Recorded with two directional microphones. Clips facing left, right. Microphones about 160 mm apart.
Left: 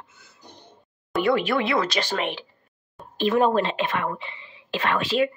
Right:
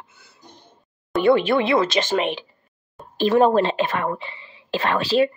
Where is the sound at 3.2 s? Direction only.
35° right (ahead or behind).